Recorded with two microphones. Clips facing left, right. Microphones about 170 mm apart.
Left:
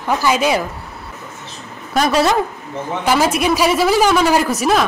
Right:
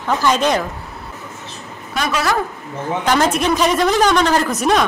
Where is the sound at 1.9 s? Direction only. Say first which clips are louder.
Left 6 dB; 35° left (ahead or behind).